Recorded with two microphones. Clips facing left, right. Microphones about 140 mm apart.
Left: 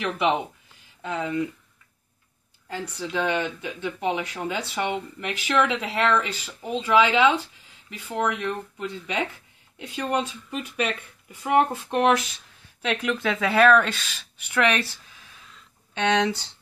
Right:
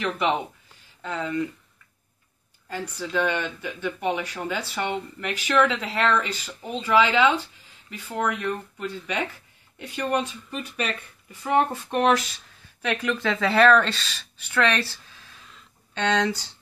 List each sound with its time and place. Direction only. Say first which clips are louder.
0.0 s speech: left 1 dB; 10° left (ahead or behind)
2.7 s speech: right 1 dB; 15° left (ahead or behind)